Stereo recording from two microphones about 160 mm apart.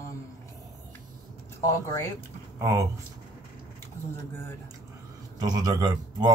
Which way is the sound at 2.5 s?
20° right (ahead or behind).